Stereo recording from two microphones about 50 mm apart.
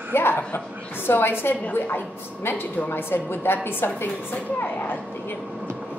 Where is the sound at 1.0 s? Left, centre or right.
Left.